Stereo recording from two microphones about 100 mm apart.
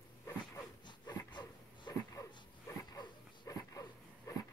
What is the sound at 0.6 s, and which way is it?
Dog, 45° left (ahead or behind).